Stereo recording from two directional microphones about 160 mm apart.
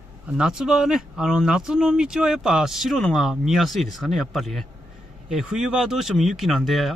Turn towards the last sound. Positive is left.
turn(degrees=0)  # may be behind; listen again after turning